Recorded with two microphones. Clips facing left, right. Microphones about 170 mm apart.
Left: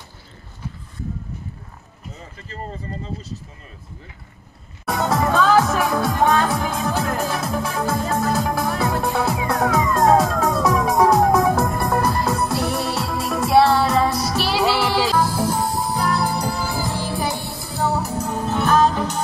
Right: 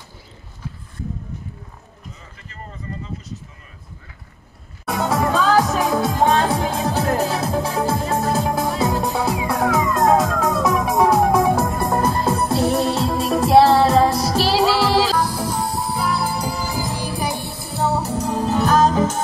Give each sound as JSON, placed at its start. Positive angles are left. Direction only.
{"t": 4.8, "sound": "music", "side_deg": -5}
{"t": 5.6, "sound": "music", "side_deg": -20}
{"t": 15.1, "sound": "music", "side_deg": 5}